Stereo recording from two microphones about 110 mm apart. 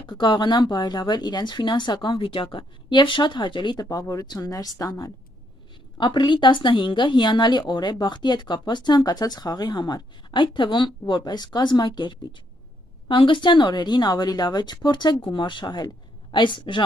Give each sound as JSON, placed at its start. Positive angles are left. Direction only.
{"t": 0.0, "sound": "speech", "side_deg": 45}
{"t": 5.9, "sound": "a woman's voice", "side_deg": 45}